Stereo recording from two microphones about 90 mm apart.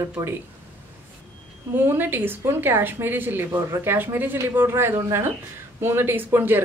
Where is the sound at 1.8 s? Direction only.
25° right (ahead or behind).